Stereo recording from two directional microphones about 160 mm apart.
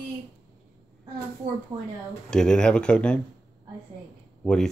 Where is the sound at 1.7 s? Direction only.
25° right (ahead or behind).